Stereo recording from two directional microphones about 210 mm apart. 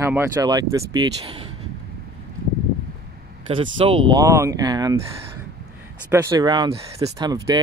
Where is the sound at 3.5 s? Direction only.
25° right (ahead or behind).